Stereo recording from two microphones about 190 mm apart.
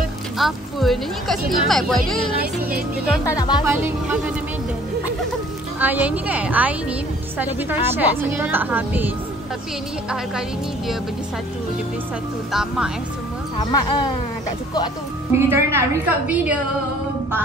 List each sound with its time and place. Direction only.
0.4 s speech: centre (ahead or behind)
3.3 s speech: 20° left (ahead or behind)
3.6 s a woman's voice: 10° right (ahead or behind)
5.8 s a woman's voice: 10° right (ahead or behind)
12.5 s speech: centre (ahead or behind)
13.6 s speech: 20° left (ahead or behind)
15.3 s a woman's voice: 15° right (ahead or behind)